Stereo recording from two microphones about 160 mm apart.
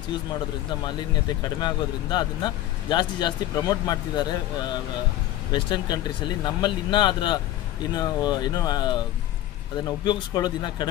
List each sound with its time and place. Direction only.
1.4 s speech: 25° left (ahead or behind)
5.5 s speech: 30° left (ahead or behind)